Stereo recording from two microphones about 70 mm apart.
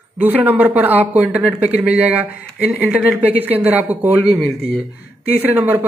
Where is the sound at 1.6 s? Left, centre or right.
Right.